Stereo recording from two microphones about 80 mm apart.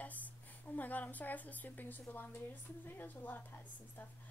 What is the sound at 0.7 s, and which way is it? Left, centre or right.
Speech, left.